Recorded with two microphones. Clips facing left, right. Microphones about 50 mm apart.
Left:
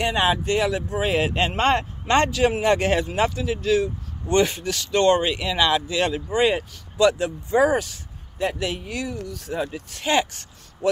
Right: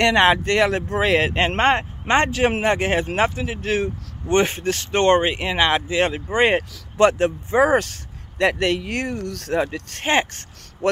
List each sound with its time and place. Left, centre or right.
0.0 s speech: right
1.6 s speech: right
7.7 s speech: right
10.0 s speech: right
10.8 s speech: right